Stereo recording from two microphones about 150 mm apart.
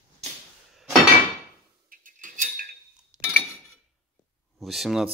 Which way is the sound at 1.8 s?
70° right (ahead or behind).